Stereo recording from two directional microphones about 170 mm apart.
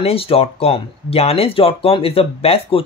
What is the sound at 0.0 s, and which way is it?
Speech, 35° left (ahead or behind).